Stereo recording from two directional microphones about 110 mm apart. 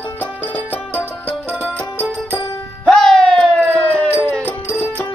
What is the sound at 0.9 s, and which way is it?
Music, 15° left (ahead or behind).